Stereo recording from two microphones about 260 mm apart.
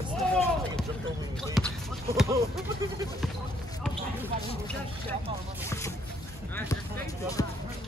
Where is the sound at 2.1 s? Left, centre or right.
Centre.